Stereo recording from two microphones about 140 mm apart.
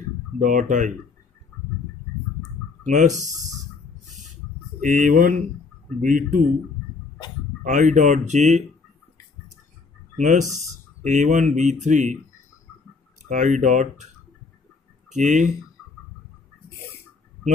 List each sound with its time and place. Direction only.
0.4 s speech: 65° right (ahead or behind)
2.8 s speech: 60° right (ahead or behind)
4.2 s a sound: 65° right (ahead or behind)
5.9 s speech: 70° right (ahead or behind)
7.6 s speech: 65° right (ahead or behind)
10.1 s speech: 60° right (ahead or behind)
13.3 s speech: 65° right (ahead or behind)